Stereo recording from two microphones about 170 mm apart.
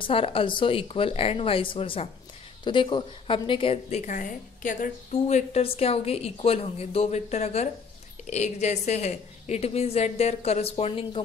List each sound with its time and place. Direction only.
0.0 s a woman's voice: 35° left (ahead or behind)